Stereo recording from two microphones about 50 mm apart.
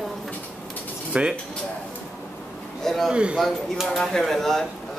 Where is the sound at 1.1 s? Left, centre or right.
Right.